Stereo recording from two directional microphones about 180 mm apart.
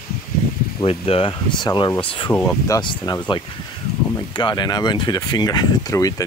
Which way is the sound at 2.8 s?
25° left (ahead or behind).